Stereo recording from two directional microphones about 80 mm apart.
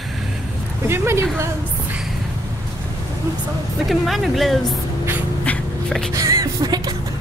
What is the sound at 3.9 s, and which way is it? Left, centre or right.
Speech, centre.